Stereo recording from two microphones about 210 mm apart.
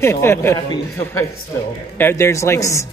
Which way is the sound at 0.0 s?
10° left (ahead or behind).